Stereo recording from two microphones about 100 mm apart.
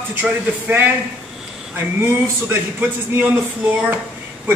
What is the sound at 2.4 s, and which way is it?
Speech, 25° right (ahead or behind).